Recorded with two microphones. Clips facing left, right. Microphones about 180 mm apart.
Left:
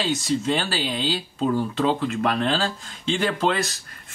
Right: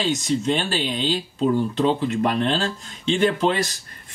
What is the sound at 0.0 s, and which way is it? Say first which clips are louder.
Speech: right 1 dB; centre (ahead or behind).